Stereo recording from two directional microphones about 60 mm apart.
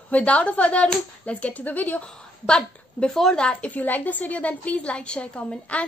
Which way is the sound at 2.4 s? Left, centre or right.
Centre.